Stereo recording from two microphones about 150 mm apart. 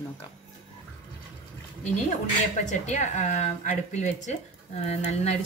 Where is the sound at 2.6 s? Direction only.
55° left (ahead or behind).